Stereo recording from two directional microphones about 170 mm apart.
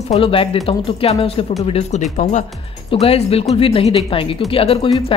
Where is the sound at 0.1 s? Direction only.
35° left (ahead or behind).